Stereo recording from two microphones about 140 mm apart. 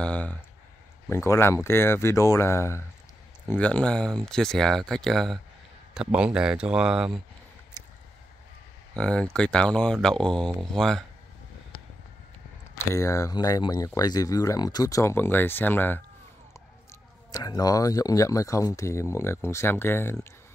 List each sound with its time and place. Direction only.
0.0 s speech: 10° left (ahead or behind)
8.9 s speech: 5° left (ahead or behind)
12.9 s speech: 20° left (ahead or behind)
17.3 s speech: 30° left (ahead or behind)